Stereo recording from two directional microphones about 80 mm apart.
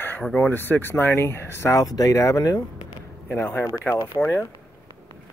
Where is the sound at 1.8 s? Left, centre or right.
Left.